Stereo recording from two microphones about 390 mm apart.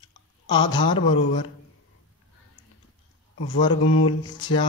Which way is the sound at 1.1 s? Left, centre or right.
Left.